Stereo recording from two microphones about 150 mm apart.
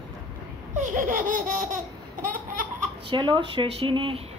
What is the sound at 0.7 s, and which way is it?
Laughter, 60° right (ahead or behind).